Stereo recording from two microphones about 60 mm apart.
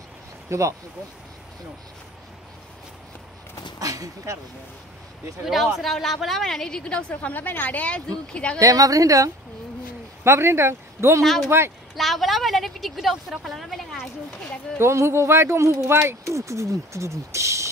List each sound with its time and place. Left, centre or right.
0.5 s speech: right
3.8 s speech: right
5.4 s a woman's voice: centre
7.2 s speech: left
8.5 s a woman's voice: right
10.2 s speech: right
11.2 s a woman's voice: centre
14.8 s speech: right